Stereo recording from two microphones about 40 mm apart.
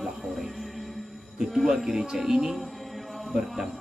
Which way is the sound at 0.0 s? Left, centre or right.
Centre.